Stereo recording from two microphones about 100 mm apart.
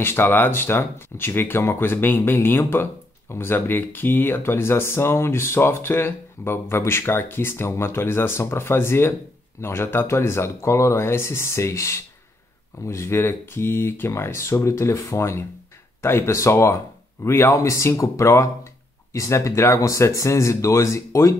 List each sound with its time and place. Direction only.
0.0 s speech: 20° left (ahead or behind)